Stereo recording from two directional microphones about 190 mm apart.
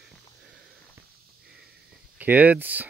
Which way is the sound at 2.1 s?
10° right (ahead or behind).